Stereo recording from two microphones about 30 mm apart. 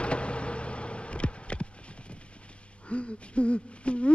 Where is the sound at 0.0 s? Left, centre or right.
Left.